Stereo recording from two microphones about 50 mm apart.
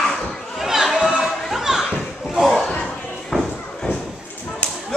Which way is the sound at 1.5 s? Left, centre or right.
Centre.